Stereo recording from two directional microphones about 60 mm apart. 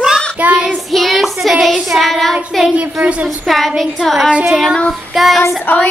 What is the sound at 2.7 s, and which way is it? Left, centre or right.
Speech, right.